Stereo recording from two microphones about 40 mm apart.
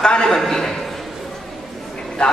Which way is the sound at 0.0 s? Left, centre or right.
Centre.